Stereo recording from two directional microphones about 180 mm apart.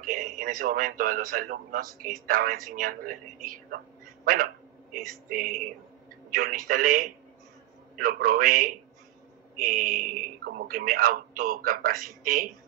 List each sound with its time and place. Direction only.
0.0 s a man's voice: 50° right (ahead or behind)